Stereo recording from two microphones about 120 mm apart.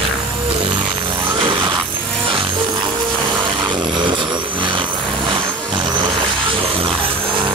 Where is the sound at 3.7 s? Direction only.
40° right (ahead or behind).